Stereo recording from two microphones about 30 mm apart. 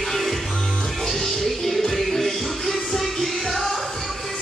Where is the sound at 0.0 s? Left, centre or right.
Centre.